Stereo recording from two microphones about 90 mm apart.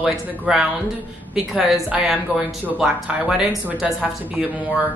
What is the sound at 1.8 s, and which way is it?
Speech, 10° right (ahead or behind).